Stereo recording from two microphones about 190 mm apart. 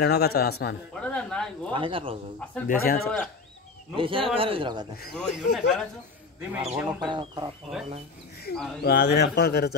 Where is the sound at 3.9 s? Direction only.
30° right (ahead or behind).